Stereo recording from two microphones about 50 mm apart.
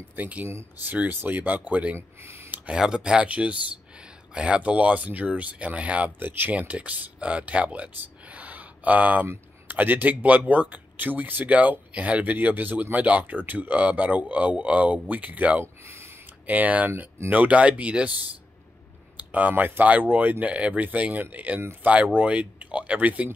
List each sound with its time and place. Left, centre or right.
0.1 s speech: right
2.0 s speech: right
2.7 s speech: centre
6.1 s speech: right
6.7 s speech: right
8.0 s a sound: right
9.7 s speech: right
13.2 s speech: right
15.6 s a sound: right
16.4 s speech: right
19.1 s speech: right